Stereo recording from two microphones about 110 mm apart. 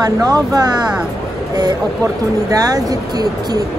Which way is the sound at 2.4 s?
35° right (ahead or behind).